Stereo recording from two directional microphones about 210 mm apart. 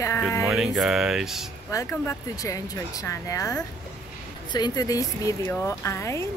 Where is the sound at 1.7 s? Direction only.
15° left (ahead or behind).